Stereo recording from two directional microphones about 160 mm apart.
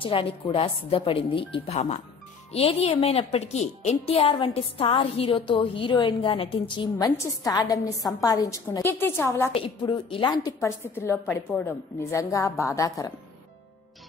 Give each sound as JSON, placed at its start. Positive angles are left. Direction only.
{"t": 0.0, "sound": "a woman's voice", "side_deg": 35}
{"t": 9.5, "sound": "a woman's voice", "side_deg": 35}